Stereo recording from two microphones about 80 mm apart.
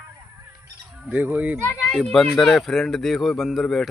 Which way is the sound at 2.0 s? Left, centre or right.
Centre.